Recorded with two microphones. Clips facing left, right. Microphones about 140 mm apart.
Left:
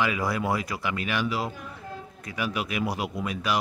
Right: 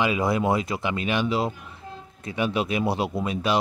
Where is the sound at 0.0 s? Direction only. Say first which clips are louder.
Right 4 dB; 25° right (ahead or behind).